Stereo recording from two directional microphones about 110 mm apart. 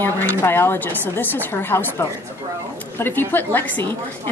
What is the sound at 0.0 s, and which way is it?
A woman's voice, 20° left (ahead or behind).